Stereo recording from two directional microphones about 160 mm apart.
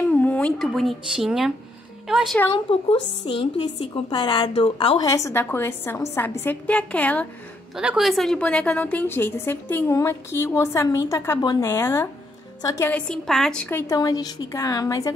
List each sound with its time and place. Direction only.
0.1 s a woman's voice: 10° left (ahead or behind)
2.5 s a woman's voice: 35° left (ahead or behind); by 7.2 s 10° left (ahead or behind)
7.7 s a woman's voice: 5° right (ahead or behind); by 12.9 s 20° left (ahead or behind)
12.9 s a woman's voice: 5° left (ahead or behind); by 15.1 s 20° left (ahead or behind)